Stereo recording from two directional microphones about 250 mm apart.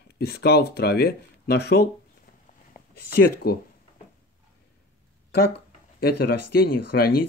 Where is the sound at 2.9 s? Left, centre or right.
Left.